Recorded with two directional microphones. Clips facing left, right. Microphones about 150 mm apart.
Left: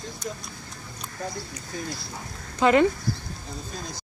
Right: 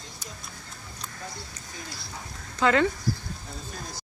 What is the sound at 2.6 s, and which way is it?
Speech, 15° left (ahead or behind).